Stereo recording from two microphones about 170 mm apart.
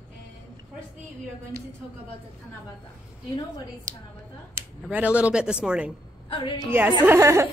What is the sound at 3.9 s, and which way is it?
Speech, 50° right (ahead or behind).